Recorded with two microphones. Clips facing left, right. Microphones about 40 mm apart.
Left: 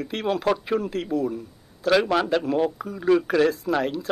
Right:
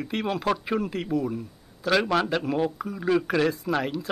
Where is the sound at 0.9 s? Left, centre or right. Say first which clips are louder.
Left 2 dB; centre.